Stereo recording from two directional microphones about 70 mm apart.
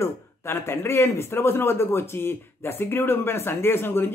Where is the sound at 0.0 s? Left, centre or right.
Left.